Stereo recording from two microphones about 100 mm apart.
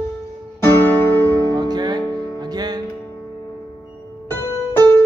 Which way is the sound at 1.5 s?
45° right (ahead or behind).